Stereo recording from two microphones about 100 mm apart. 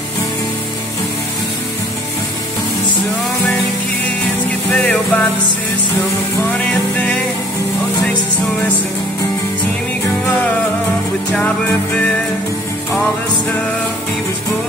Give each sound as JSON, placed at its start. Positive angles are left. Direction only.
{"t": 4.5, "sound": "music", "side_deg": 15}
{"t": 6.6, "sound": "music", "side_deg": 10}
{"t": 10.2, "sound": "music", "side_deg": 20}